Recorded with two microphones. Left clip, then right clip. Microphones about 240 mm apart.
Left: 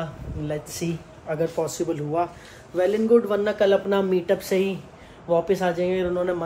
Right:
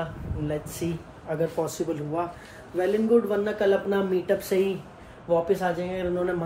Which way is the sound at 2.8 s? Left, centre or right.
Centre.